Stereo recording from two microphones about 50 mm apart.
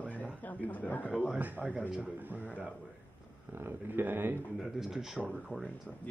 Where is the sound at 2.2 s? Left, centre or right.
Right.